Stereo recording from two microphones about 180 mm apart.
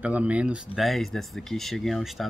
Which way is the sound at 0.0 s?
5° right (ahead or behind).